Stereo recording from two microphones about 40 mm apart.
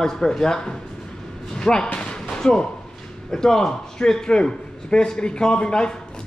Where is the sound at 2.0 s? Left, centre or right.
Centre.